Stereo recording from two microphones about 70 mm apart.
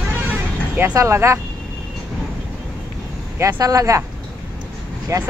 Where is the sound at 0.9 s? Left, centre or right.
Right.